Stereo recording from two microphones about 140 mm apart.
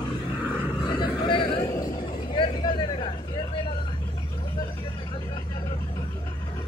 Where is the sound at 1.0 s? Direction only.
35° left (ahead or behind).